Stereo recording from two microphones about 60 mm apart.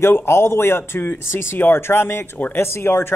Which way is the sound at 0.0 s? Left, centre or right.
Left.